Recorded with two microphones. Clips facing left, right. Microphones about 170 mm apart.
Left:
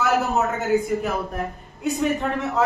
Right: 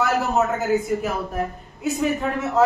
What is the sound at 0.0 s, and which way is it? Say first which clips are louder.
A man's voice: even; centre (ahead or behind).